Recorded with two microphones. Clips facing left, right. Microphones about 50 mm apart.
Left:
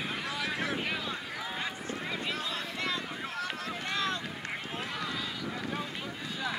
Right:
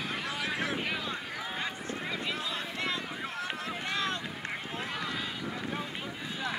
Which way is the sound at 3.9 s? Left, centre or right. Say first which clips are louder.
Left 1 dB; centre.